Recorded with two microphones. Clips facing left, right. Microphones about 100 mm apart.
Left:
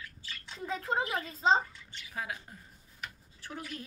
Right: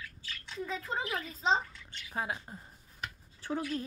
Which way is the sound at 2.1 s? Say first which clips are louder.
Right 3 dB; 30° right (ahead or behind).